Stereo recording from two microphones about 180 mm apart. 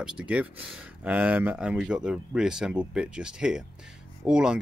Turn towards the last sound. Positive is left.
turn(degrees=-5)  # may be behind; listen again after turning